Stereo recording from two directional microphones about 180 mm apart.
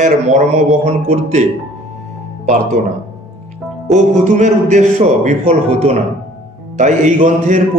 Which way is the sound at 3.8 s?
40° right (ahead or behind).